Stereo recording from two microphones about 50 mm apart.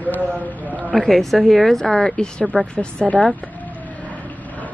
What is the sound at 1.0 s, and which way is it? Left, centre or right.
A woman's voice, centre.